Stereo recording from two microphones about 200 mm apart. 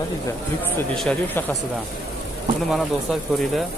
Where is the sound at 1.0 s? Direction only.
5° left (ahead or behind).